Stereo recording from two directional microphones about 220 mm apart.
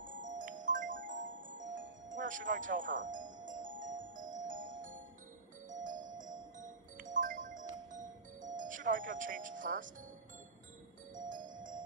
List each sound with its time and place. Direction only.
0.0 s music: 35° right (ahead or behind)
11.2 s music: 35° right (ahead or behind)